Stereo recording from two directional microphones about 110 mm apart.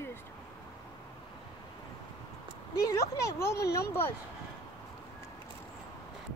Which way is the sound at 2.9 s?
25° left (ahead or behind).